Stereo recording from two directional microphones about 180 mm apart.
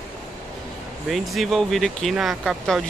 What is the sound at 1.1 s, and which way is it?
Speech, centre (ahead or behind).